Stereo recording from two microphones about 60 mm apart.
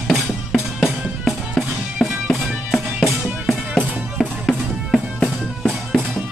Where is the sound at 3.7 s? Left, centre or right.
Centre.